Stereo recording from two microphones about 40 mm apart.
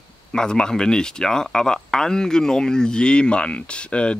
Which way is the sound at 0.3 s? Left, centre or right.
Centre.